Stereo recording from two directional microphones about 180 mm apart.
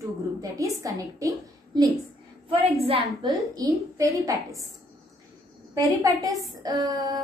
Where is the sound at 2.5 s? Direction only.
30° right (ahead or behind).